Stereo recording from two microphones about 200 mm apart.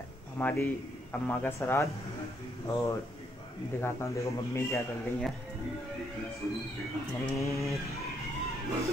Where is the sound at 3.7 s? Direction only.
15° left (ahead or behind).